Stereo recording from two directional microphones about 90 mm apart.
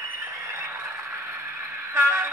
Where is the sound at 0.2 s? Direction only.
30° right (ahead or behind).